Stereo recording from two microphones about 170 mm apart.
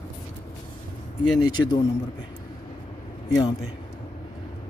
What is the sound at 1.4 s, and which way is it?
Speech, 25° left (ahead or behind).